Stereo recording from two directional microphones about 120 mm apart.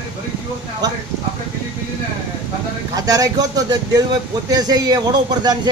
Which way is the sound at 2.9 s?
30° right (ahead or behind).